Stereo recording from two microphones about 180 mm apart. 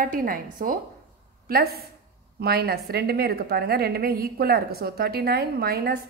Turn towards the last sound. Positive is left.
turn(degrees=-60)  # may be behind; listen again after turning